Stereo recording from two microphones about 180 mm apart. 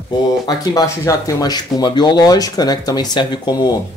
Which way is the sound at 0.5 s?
20° left (ahead or behind).